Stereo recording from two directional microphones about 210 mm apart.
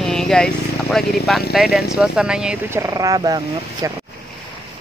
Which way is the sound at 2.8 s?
15° right (ahead or behind).